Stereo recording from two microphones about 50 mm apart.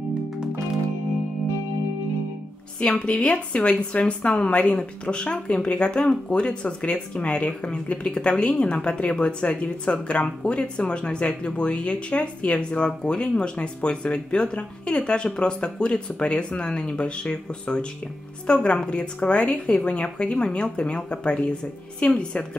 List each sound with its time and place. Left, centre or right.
2.8 s a woman's voice: left